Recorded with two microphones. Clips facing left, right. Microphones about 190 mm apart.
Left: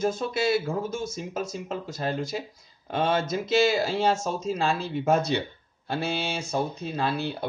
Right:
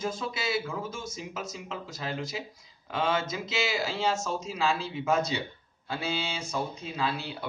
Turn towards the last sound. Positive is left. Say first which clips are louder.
# left 4 dB
turn(degrees=55)  # may be behind; listen again after turning